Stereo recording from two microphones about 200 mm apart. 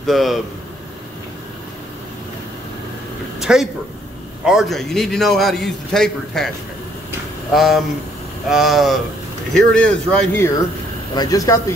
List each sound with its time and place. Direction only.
0.0 s a man's voice: centre (ahead or behind)
3.3 s a sound: 5° right (ahead or behind)
4.5 s a man's voice: centre (ahead or behind)
7.5 s a man's voice: centre (ahead or behind)
11.1 s speech: 20° left (ahead or behind)